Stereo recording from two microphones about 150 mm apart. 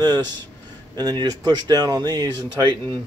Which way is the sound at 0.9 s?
25° right (ahead or behind).